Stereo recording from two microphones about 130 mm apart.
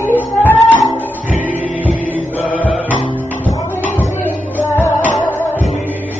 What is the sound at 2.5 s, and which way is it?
Music, 10° left (ahead or behind).